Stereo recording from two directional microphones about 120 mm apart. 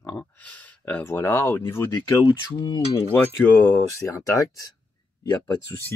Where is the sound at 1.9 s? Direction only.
35° left (ahead or behind).